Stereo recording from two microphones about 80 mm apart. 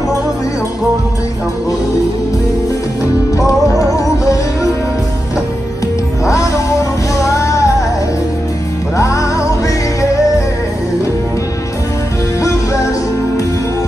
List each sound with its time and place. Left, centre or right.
3.3 s music: left
6.2 s music: left
8.9 s music: left